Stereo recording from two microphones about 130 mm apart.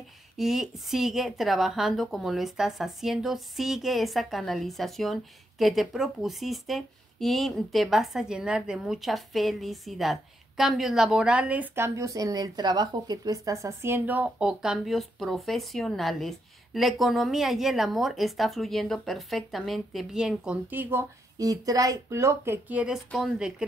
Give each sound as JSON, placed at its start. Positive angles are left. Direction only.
{"t": 0.4, "sound": "a woman's voice", "side_deg": -5}
{"t": 21.4, "sound": "speech", "side_deg": -25}